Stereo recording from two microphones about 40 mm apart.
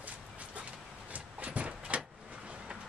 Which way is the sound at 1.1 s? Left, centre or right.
Right.